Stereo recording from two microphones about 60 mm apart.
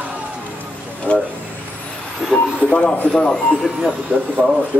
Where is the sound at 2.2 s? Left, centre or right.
Centre.